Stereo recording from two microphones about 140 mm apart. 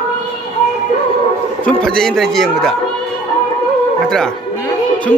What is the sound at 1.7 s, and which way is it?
Speech, 5° left (ahead or behind).